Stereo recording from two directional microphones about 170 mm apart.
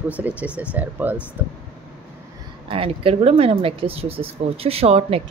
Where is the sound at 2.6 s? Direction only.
30° right (ahead or behind).